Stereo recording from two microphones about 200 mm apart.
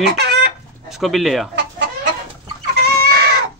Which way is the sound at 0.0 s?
55° right (ahead or behind).